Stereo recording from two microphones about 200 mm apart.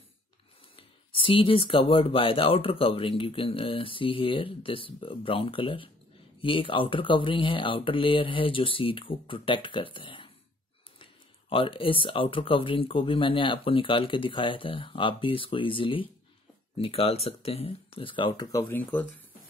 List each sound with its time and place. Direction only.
0.7 s speech: 25° left (ahead or behind); by 19.0 s 10° left (ahead or behind)